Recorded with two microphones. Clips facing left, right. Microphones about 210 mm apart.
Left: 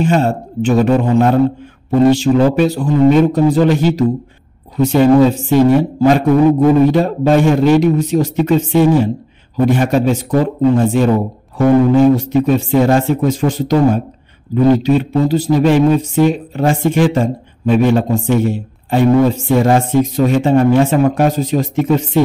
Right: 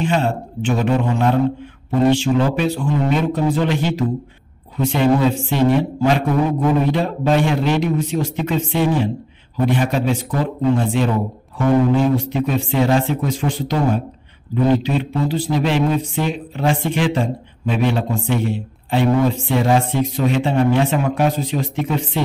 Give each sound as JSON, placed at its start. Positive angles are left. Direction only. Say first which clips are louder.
{"t": 0.0, "sound": "speech", "louder": "left 5 dB", "side_deg": 40}